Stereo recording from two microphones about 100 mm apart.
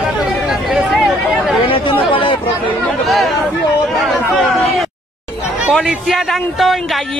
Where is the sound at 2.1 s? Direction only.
55° left (ahead or behind).